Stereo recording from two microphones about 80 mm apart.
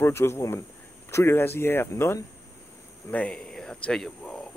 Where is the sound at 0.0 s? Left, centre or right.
Left.